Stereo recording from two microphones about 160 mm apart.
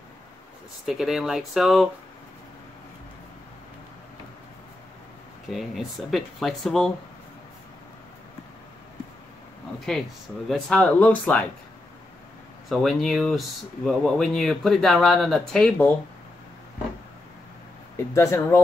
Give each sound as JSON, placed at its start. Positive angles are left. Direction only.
{"t": 0.8, "sound": "speech", "side_deg": 0}
{"t": 5.5, "sound": "speech", "side_deg": 0}
{"t": 9.9, "sound": "speech", "side_deg": 5}
{"t": 12.6, "sound": "speech", "side_deg": 0}
{"t": 17.9, "sound": "speech", "side_deg": 15}